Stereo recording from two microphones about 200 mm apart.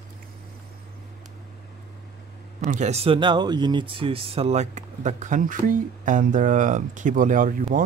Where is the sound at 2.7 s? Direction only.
35° right (ahead or behind).